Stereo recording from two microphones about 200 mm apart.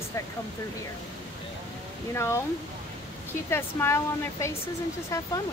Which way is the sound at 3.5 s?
15° left (ahead or behind).